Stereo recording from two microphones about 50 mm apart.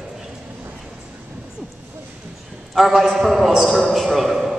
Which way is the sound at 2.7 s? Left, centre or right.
Centre.